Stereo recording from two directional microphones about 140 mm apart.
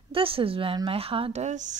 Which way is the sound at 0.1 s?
40° right (ahead or behind).